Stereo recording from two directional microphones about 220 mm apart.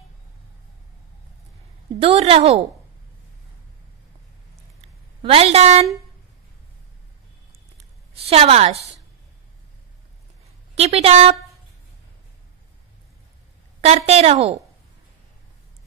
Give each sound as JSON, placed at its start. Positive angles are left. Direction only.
{"t": 2.0, "sound": "a woman's voice", "side_deg": -25}
{"t": 5.2, "sound": "a woman's voice", "side_deg": -25}
{"t": 7.7, "sound": "a sound", "side_deg": -25}
{"t": 10.8, "sound": "a woman's voice", "side_deg": -25}
{"t": 13.7, "sound": "a woman's voice", "side_deg": -30}